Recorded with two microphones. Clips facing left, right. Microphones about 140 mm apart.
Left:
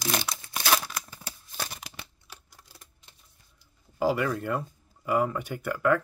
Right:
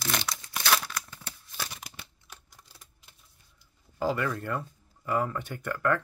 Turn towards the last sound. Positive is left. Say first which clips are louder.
# left 3 dB
turn(degrees=10)  # may be behind; listen again after turning